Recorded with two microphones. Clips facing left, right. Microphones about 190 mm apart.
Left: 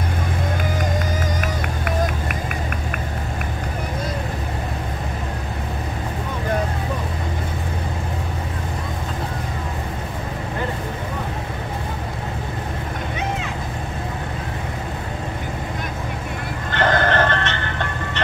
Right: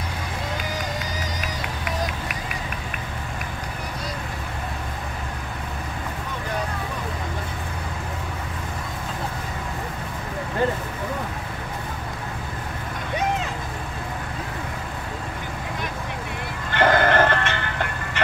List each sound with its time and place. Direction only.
0.9 s music: 50° left (ahead or behind)
16.7 s music: 10° right (ahead or behind)